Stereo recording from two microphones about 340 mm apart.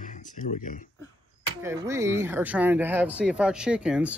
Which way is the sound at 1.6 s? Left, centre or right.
Centre.